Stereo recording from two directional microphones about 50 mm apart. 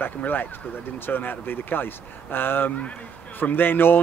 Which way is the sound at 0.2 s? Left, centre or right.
Left.